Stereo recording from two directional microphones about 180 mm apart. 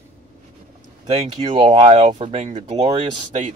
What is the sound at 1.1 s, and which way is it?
Speech, 30° right (ahead or behind).